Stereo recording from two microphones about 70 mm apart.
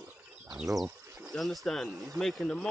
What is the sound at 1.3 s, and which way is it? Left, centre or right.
Speech, centre.